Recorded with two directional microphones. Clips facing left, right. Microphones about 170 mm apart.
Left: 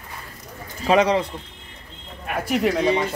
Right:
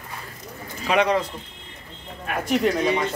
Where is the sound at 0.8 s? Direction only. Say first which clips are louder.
Left 3 dB; 30° left (ahead or behind).